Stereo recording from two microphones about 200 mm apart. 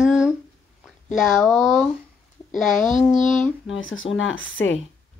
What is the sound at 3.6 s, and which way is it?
Speech, 75° left (ahead or behind).